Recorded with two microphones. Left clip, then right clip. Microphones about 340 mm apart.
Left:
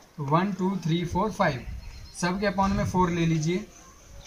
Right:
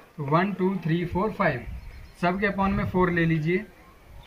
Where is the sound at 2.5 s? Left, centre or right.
Centre.